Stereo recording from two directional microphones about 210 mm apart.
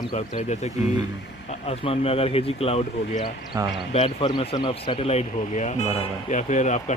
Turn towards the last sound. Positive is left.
turn(degrees=35)  # may be behind; listen again after turning